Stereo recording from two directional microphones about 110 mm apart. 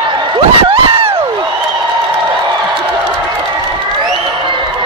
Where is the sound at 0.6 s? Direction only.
60° right (ahead or behind).